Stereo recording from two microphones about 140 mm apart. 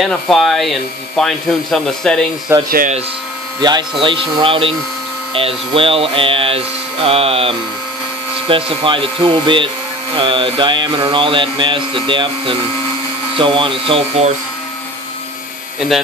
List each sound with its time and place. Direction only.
0.0 s speech: centre (ahead or behind)
2.5 s speech: 15° right (ahead or behind)
3.6 s speech: 30° right (ahead or behind)
4.0 s mantra: 35° right (ahead or behind)